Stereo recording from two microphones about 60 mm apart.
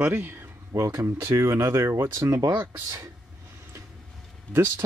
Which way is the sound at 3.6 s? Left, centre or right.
Right.